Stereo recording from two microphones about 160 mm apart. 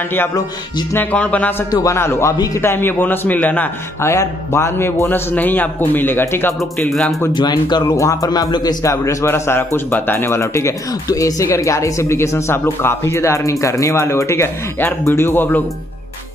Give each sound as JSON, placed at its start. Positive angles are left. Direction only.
{"t": 0.1, "sound": "speech", "side_deg": 15}
{"t": 1.7, "sound": "speech", "side_deg": 20}
{"t": 6.6, "sound": "music", "side_deg": 0}
{"t": 7.3, "sound": "a man's voice", "side_deg": 25}